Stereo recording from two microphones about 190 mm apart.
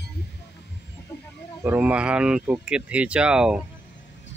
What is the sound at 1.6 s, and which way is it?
Speech, 10° right (ahead or behind).